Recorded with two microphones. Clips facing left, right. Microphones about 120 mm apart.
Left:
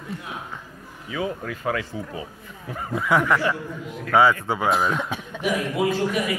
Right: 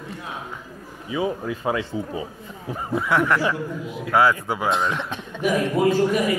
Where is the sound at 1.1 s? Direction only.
20° right (ahead or behind).